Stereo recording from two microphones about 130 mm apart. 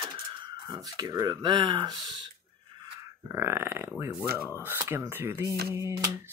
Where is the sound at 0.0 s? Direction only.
35° right (ahead or behind).